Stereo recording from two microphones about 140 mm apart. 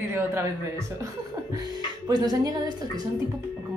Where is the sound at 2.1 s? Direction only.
30° right (ahead or behind).